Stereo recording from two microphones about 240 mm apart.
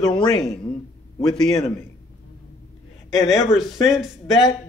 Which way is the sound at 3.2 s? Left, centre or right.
Centre.